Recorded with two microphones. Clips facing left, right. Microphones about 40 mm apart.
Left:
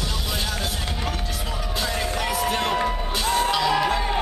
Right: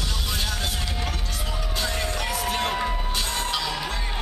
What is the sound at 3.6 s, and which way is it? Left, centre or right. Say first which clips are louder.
Music: left 8 dB; left.